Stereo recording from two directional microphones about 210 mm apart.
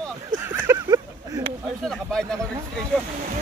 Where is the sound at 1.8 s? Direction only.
Centre (ahead or behind).